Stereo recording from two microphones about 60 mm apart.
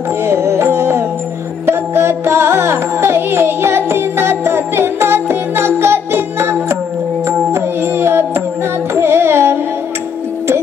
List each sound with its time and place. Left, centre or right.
0.2 s music: right
8.9 s carnatic music: right